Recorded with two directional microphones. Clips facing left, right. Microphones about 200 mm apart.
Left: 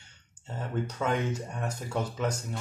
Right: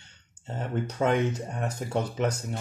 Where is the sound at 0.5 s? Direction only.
20° right (ahead or behind).